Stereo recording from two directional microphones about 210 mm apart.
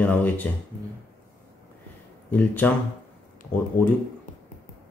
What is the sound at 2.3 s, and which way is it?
Speech, 10° left (ahead or behind).